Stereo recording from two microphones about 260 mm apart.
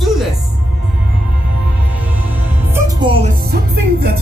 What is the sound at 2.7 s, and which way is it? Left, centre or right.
Music, centre.